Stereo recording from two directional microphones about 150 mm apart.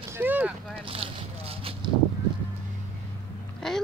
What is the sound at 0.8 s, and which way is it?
Boat, 40° right (ahead or behind).